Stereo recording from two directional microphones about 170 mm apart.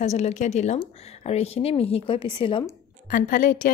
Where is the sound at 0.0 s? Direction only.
40° left (ahead or behind).